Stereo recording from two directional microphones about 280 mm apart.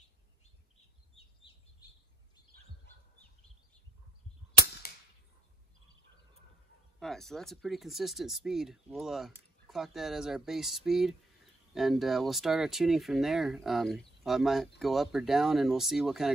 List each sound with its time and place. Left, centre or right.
7.0 s speech: centre